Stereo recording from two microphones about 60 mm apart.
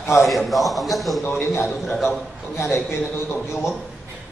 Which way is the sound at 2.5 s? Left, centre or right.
Left.